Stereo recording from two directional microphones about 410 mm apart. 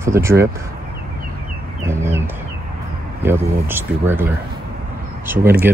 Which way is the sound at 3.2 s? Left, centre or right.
Centre.